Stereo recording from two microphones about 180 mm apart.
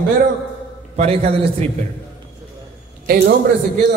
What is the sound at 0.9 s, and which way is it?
Speech, 35° right (ahead or behind).